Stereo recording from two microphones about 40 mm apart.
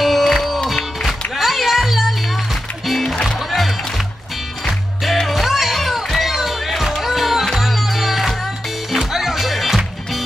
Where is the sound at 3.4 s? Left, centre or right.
Centre.